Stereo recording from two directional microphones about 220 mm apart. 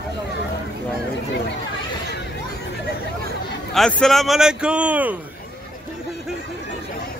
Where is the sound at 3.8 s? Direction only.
5° left (ahead or behind).